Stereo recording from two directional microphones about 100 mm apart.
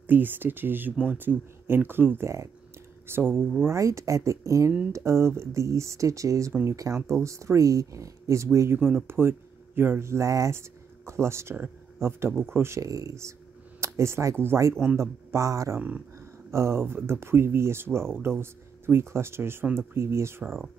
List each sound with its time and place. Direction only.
0.0 s speech: 20° right (ahead or behind)